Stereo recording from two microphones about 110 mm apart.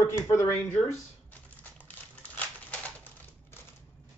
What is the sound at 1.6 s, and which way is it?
Crumpling, 15° left (ahead or behind).